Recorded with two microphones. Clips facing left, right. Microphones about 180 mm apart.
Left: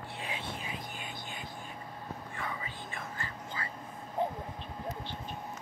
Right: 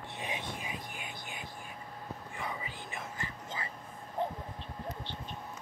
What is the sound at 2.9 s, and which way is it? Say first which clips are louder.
Whispering: right 1 dB; 15° right (ahead or behind).